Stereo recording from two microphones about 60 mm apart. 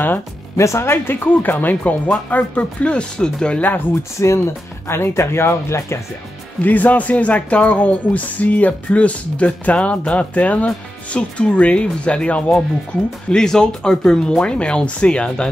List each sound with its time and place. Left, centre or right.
0.6 s speech: left; by 3.6 s centre
4.2 s speech: left
6.6 s speech: left